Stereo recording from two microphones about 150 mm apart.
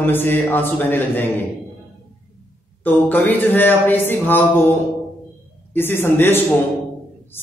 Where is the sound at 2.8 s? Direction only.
10° left (ahead or behind).